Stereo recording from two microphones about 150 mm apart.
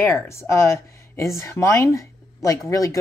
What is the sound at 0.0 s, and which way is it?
A woman's voice, 15° left (ahead or behind).